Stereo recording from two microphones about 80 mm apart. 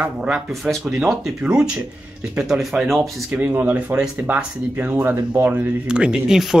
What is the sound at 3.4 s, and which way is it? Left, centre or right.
Speech, right.